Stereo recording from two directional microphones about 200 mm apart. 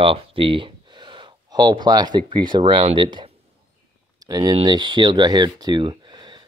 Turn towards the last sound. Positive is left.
turn(degrees=-25)  # may be behind; listen again after turning